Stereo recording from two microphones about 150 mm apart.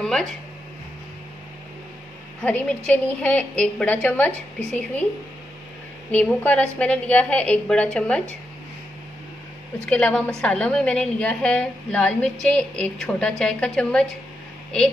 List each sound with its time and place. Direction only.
0.0 s a sound: 5° left (ahead or behind)
2.9 s a woman's voice: 10° left (ahead or behind)
6.1 s a woman's voice: 10° left (ahead or behind)
9.8 s a woman's voice: 10° left (ahead or behind)